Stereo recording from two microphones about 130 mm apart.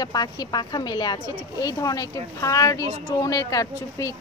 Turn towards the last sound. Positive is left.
turn(degrees=25)  # may be behind; listen again after turning